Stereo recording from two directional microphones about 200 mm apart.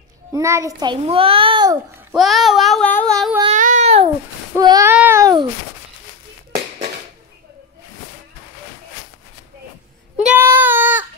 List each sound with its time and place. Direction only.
0.3 s a child's voice: 15° right (ahead or behind)
2.1 s child singing: centre (ahead or behind)
3.5 s a sound: 40° right (ahead or behind)
4.6 s child singing: 20° right (ahead or behind)
4.9 s a sound: 10° right (ahead or behind)
10.2 s child singing: 10° right (ahead or behind)